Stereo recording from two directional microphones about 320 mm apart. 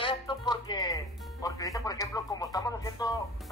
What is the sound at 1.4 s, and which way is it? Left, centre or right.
Speech, centre.